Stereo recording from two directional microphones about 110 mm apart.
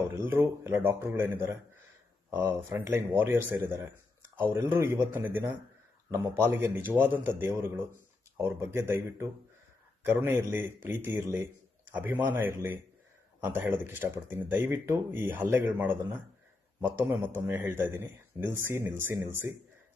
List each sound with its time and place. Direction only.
0.0 s a man's voice: 25° right (ahead or behind)
2.8 s a man's voice: 25° right (ahead or behind)